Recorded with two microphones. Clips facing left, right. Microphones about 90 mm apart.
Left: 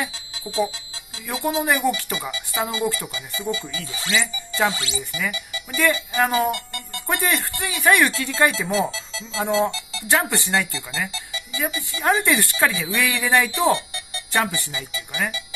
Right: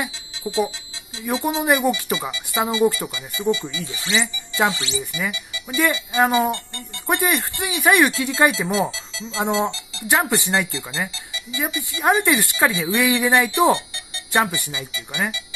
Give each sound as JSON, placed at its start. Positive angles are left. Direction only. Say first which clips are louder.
{"t": 0.0, "sound": "speech", "louder": "right 2 dB", "side_deg": -25}
{"t": 4.6, "sound": "speech", "louder": "right 1 dB", "side_deg": -30}
{"t": 10.0, "sound": "speech", "louder": "right 2 dB", "side_deg": -20}